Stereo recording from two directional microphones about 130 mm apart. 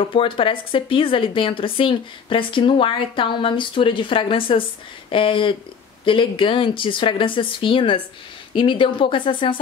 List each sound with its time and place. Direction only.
0.0 s a woman's voice: 40° left (ahead or behind)